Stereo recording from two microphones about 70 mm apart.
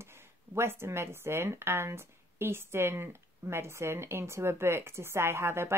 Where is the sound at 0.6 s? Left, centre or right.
Right.